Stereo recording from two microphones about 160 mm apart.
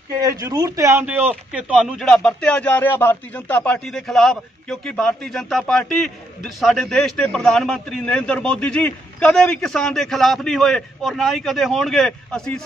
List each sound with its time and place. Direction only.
0.1 s a man's voice: 25° right (ahead or behind); by 12.6 s 5° left (ahead or behind)